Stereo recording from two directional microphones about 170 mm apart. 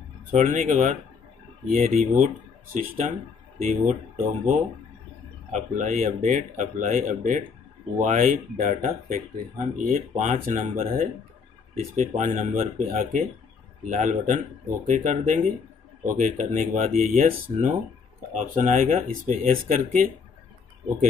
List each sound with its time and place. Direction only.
0.4 s speech: 45° right (ahead or behind)
3.6 s speech: 45° right (ahead or behind)